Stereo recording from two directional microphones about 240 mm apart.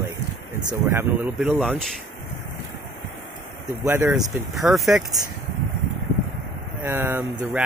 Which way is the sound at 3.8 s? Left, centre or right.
Centre.